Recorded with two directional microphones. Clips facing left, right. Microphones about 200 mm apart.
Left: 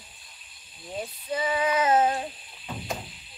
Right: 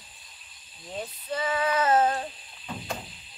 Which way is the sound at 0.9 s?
10° left (ahead or behind).